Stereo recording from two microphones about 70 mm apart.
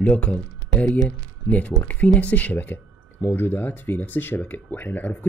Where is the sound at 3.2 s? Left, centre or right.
Left.